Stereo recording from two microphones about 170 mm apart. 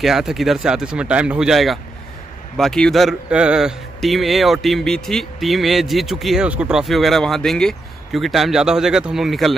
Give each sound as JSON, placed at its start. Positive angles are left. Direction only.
{"t": 0.0, "sound": "a man's voice", "side_deg": 0}